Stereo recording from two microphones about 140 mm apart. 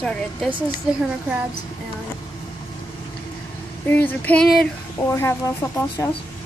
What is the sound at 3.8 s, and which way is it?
Speech, 15° left (ahead or behind).